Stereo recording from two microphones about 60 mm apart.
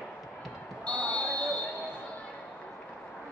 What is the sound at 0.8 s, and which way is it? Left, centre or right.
Basketball bounce, centre.